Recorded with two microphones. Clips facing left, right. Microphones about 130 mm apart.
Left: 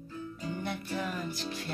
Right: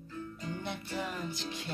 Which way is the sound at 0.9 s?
20° right (ahead or behind).